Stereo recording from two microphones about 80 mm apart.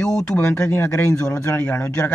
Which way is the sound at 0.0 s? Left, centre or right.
Centre.